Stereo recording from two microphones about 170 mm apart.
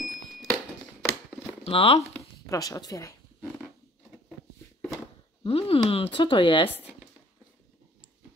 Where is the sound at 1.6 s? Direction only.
35° left (ahead or behind).